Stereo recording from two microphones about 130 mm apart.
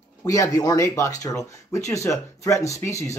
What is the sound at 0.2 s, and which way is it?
A man's voice, 25° left (ahead or behind).